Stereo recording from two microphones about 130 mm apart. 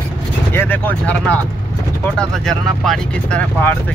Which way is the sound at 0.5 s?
15° left (ahead or behind).